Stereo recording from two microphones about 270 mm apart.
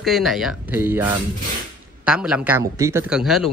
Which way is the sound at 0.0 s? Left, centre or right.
Centre.